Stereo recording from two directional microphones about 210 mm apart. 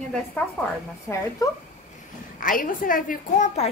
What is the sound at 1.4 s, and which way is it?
Speech, 15° left (ahead or behind).